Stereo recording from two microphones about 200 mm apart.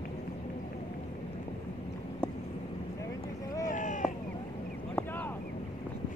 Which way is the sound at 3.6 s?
40° left (ahead or behind).